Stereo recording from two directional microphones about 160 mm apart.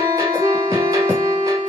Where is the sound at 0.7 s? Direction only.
20° right (ahead or behind).